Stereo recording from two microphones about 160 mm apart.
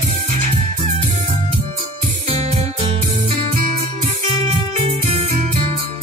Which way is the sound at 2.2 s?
40° right (ahead or behind).